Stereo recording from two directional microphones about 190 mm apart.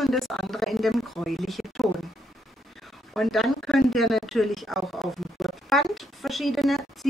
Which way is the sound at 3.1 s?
Centre (ahead or behind).